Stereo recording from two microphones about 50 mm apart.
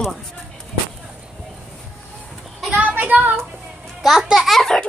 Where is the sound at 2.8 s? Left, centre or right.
Right.